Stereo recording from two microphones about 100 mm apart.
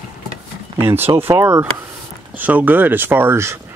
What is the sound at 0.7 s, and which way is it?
Speech, 20° right (ahead or behind).